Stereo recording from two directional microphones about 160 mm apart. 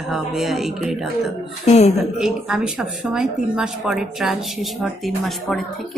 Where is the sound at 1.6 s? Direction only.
40° left (ahead or behind).